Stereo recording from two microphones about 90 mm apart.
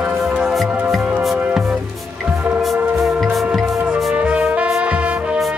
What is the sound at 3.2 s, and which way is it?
Music, centre (ahead or behind).